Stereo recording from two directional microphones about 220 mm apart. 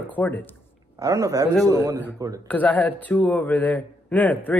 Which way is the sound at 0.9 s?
15° right (ahead or behind).